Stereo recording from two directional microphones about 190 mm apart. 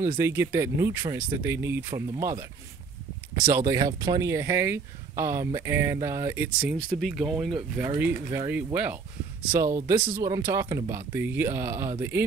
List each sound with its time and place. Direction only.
0.2 s speech: 15° right (ahead or behind)
3.4 s speech: 15° right (ahead or behind)